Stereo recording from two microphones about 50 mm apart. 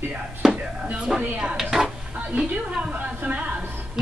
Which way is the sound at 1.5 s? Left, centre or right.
Centre.